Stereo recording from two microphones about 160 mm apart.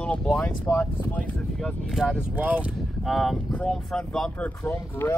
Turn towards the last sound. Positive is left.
turn(degrees=15)  # may be behind; listen again after turning